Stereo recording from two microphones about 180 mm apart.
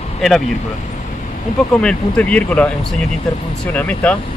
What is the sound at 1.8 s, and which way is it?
Speech, 5° left (ahead or behind).